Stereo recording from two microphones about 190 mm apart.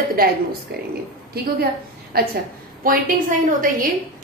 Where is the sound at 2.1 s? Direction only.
55° right (ahead or behind).